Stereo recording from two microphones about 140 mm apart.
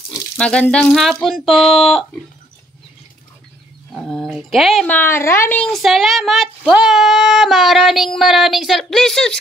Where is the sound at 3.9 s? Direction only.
5° left (ahead or behind).